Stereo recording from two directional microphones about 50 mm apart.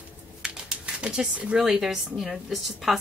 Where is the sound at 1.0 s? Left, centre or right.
Centre.